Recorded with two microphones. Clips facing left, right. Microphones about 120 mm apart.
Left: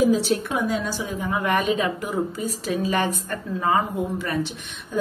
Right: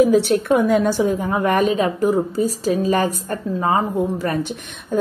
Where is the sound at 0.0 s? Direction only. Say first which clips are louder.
Right 5 dB; 60° right (ahead or behind).